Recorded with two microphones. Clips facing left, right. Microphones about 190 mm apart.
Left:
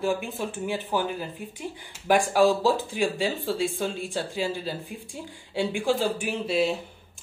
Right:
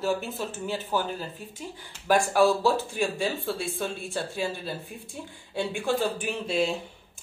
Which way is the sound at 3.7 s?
15° left (ahead or behind).